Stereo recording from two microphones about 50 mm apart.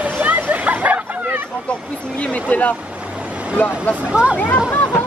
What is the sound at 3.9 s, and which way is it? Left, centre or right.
Speech, right.